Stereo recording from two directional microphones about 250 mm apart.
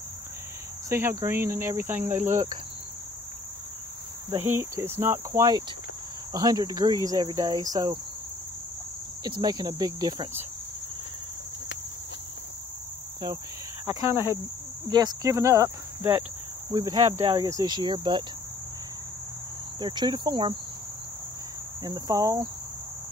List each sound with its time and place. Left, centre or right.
0.8 s speech: centre
4.3 s speech: centre
9.2 s speech: centre
13.8 s speech: centre
19.8 s speech: centre
21.8 s speech: centre